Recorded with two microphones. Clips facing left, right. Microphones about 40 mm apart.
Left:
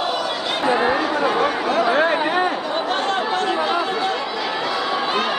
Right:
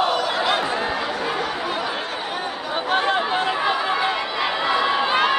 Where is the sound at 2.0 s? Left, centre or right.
Left.